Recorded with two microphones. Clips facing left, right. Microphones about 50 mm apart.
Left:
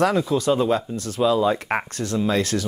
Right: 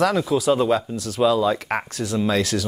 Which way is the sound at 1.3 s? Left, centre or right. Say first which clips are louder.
Even; centre.